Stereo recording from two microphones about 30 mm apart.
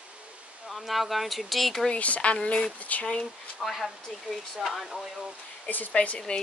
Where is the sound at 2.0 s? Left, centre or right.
Left.